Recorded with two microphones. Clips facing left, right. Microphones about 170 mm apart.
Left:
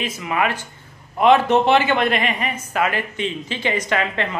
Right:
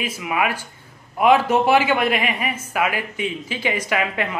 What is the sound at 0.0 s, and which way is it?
A man's voice, 10° right (ahead or behind).